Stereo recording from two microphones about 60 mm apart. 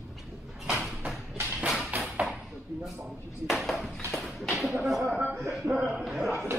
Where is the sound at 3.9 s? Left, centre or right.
Centre.